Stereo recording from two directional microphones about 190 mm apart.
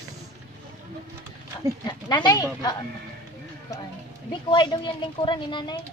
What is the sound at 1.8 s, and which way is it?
Speech, 20° left (ahead or behind).